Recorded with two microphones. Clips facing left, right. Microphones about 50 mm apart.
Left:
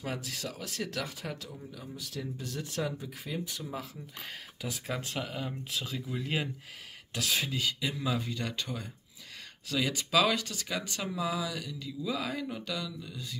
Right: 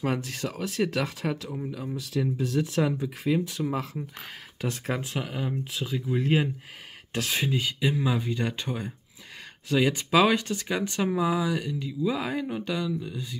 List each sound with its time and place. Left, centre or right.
0.0 s speech: right
1.3 s speech: right
4.6 s speech: right
5.0 s speech: centre